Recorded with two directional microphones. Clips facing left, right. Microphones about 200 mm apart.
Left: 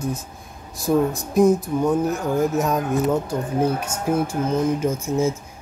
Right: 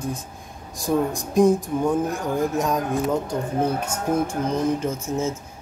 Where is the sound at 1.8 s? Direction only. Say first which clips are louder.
Left 3 dB; 5° left (ahead or behind).